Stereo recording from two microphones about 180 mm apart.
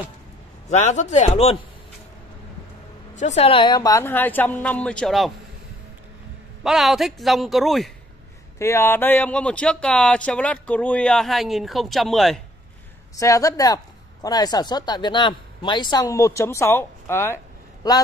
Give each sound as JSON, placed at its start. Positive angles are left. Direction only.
{"t": 0.7, "sound": "a man's voice", "side_deg": 40}
{"t": 3.2, "sound": "a woman's voice", "side_deg": 40}
{"t": 6.6, "sound": "speech", "side_deg": 0}
{"t": 8.5, "sound": "speech", "side_deg": 15}
{"t": 13.1, "sound": "speech", "side_deg": 20}